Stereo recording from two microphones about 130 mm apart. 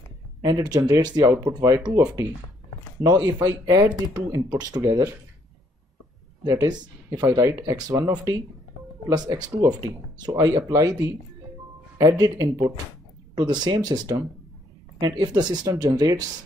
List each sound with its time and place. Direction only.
0.4 s speech: 30° right (ahead or behind)
6.4 s speech: 30° right (ahead or behind)
12.0 s speech: 25° right (ahead or behind)